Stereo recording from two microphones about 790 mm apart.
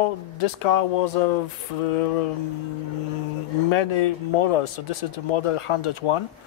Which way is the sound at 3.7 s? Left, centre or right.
Left.